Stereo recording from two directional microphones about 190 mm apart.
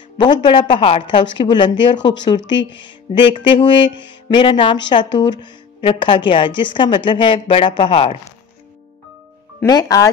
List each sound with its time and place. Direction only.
0.2 s speech: 25° left (ahead or behind)
2.5 s speech: 70° left (ahead or behind)
2.8 s speech: 25° left (ahead or behind)
9.6 s speech: 20° left (ahead or behind)